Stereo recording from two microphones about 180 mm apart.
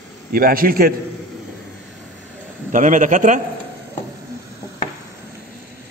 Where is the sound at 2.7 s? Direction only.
45° right (ahead or behind).